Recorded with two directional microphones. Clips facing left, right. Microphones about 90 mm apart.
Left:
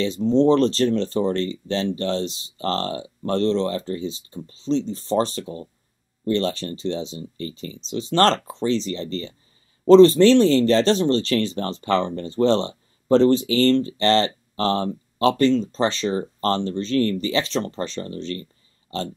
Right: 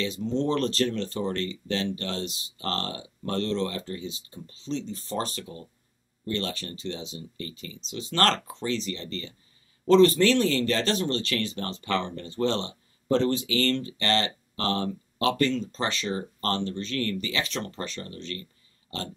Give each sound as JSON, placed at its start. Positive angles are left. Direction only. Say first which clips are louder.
{"t": 0.0, "sound": "speech", "louder": "left 9 dB", "side_deg": 30}